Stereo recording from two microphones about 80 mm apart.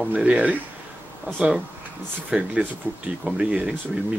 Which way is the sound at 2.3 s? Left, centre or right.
Centre.